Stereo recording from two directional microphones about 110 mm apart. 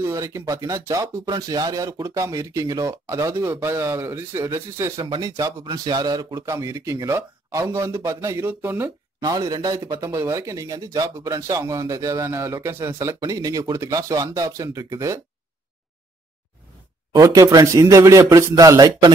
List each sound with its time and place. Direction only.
0.0 s speech: 25° right (ahead or behind)
5.0 s speech: 40° right (ahead or behind); by 8.9 s 20° right (ahead or behind)
9.2 s speech: 35° right (ahead or behind)
17.2 s speech: 30° right (ahead or behind)